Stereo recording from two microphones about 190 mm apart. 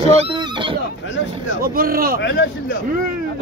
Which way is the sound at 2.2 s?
70° left (ahead or behind).